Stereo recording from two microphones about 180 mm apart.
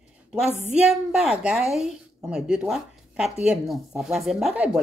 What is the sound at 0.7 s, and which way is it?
A woman's voice, 5° right (ahead or behind).